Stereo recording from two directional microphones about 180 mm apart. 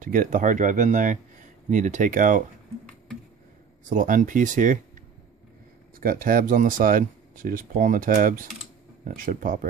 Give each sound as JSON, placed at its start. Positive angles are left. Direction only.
{"t": 0.0, "sound": "speech", "side_deg": -45}
{"t": 3.9, "sound": "speech", "side_deg": -50}
{"t": 5.9, "sound": "speech", "side_deg": -50}